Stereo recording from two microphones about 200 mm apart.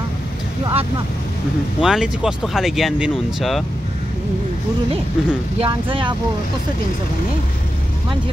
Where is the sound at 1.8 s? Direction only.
5° right (ahead or behind).